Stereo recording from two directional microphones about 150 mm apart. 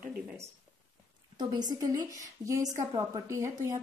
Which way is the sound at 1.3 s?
25° right (ahead or behind).